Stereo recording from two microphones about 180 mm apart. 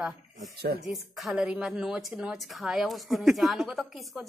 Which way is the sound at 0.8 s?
Centre (ahead or behind).